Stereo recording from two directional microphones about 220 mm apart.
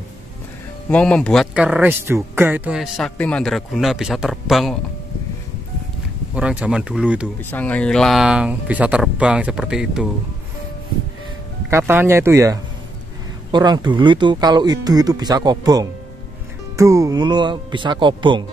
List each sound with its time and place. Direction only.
0.8 s speech: 5° left (ahead or behind)
6.3 s speech: 5° right (ahead or behind)
7.5 s speech: 5° left (ahead or behind)
11.7 s speech: 10° right (ahead or behind)